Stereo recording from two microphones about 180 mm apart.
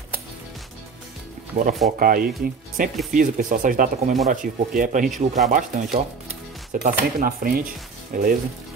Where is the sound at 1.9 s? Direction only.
50° right (ahead or behind).